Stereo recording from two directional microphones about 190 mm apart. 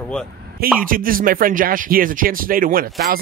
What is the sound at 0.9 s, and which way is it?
Speech, 50° right (ahead or behind).